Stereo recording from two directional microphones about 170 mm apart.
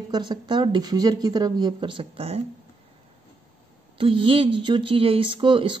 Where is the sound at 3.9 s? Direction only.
30° right (ahead or behind).